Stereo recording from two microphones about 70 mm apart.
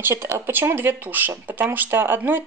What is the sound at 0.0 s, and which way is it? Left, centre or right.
Speech, right.